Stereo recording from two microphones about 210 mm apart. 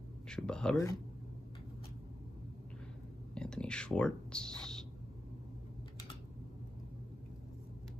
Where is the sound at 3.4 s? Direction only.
5° left (ahead or behind).